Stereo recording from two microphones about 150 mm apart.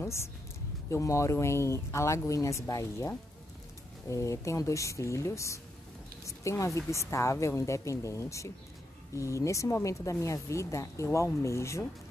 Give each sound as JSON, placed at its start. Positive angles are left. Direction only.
{"t": 0.8, "sound": "speech", "side_deg": 20}